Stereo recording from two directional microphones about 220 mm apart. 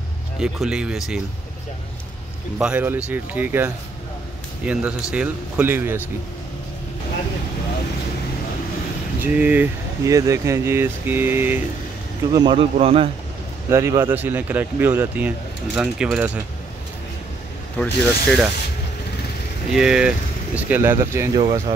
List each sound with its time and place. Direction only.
0.4 s speech: 5° right (ahead or behind)
2.6 s speech: 10° right (ahead or behind)
9.2 s speech: 5° right (ahead or behind)
12.3 s speech: 20° right (ahead or behind)
13.7 s speech: 10° right (ahead or behind)
17.7 s speech: 5° left (ahead or behind)
19.7 s speech: 5° right (ahead or behind)
21.4 s speech: 25° right (ahead or behind)